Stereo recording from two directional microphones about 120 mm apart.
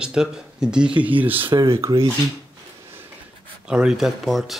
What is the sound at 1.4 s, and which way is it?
Speech, 40° right (ahead or behind).